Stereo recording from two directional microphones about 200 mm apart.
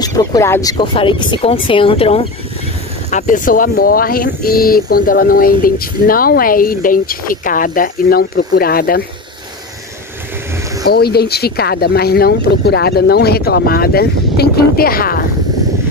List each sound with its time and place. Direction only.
0.0 s speech: 20° left (ahead or behind); by 9.0 s 50° left (ahead or behind)
10.9 s speech: 50° left (ahead or behind)